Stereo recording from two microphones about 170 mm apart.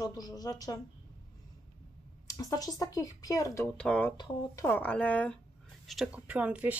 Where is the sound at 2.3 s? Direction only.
20° left (ahead or behind).